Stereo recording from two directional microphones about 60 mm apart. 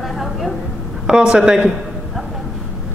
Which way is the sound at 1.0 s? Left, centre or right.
Centre.